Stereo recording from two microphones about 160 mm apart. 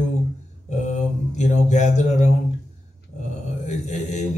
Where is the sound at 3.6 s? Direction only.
50° left (ahead or behind).